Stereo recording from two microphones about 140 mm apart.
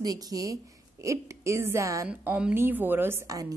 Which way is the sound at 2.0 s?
10° right (ahead or behind).